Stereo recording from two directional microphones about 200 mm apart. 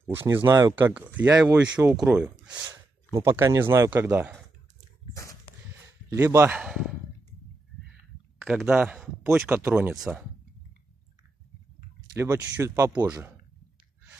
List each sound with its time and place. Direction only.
0.0 s speech: 10° right (ahead or behind)
0.9 s speech: 5° right (ahead or behind)
5.1 s a sound: 15° left (ahead or behind)
6.0 s speech: 15° right (ahead or behind)
8.5 s speech: 5° right (ahead or behind)
12.1 s speech: 15° right (ahead or behind)